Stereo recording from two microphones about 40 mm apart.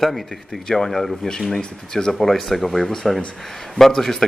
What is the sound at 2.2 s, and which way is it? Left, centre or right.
A man's voice, centre.